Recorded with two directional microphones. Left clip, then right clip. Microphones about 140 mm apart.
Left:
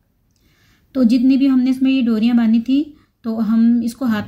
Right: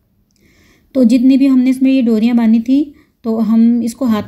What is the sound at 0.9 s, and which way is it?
A woman's voice, 20° right (ahead or behind).